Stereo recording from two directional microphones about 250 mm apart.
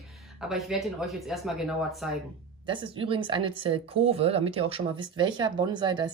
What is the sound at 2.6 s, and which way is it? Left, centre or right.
A woman's voice, centre.